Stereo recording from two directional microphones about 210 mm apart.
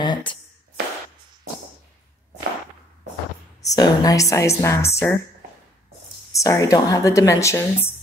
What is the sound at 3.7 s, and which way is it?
Speech, 15° left (ahead or behind).